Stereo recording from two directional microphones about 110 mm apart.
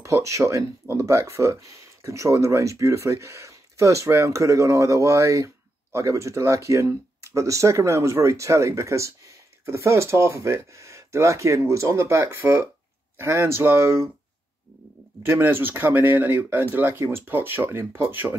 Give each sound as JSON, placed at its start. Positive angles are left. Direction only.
{"t": 0.0, "sound": "speech", "side_deg": -30}
{"t": 15.2, "sound": "speech", "side_deg": -20}